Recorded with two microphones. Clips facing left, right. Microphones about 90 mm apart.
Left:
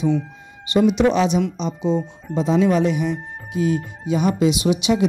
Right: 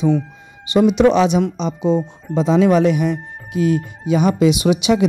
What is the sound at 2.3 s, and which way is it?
Speech, 90° right.